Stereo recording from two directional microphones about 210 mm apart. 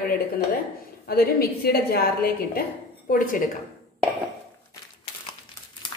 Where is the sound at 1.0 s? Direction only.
45° left (ahead or behind).